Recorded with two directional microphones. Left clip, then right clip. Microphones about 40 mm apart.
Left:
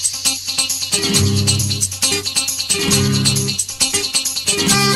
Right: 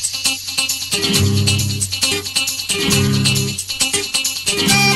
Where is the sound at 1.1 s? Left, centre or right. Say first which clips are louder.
Even; centre.